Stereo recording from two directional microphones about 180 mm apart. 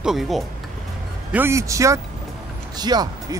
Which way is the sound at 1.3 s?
15° right (ahead or behind).